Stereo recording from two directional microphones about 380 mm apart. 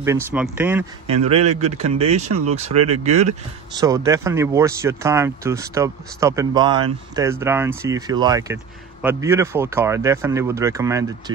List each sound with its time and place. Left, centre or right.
0.0 s speech: centre
1.0 s speech: centre